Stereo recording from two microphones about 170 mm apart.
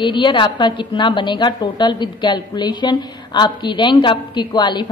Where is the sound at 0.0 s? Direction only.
30° left (ahead or behind).